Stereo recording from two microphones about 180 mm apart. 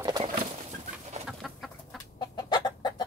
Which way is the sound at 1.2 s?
Centre (ahead or behind).